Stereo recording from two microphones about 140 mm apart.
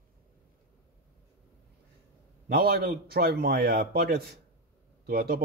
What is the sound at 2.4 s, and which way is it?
A man's voice, 90° right.